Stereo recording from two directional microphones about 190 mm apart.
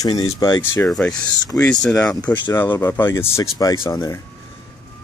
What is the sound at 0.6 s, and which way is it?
Speech, 10° left (ahead or behind).